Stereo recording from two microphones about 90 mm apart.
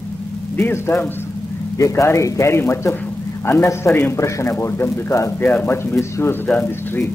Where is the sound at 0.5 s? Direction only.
25° left (ahead or behind).